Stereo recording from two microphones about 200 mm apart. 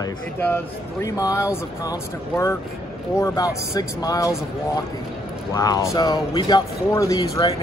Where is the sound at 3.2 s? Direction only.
15° left (ahead or behind).